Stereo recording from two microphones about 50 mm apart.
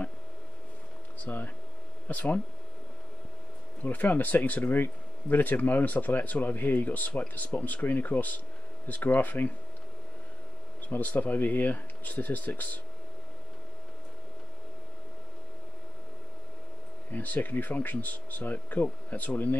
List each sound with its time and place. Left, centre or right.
1.2 s speech: left
3.8 s speech: left
10.9 s speech: left
17.1 s speech: left